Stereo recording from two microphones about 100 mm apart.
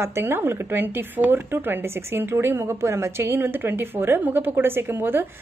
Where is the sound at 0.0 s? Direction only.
25° right (ahead or behind).